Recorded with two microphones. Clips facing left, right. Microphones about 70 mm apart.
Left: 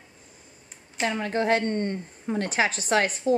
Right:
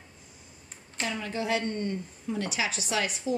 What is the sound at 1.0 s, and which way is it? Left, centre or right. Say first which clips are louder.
A woman's voice: left 6 dB; left.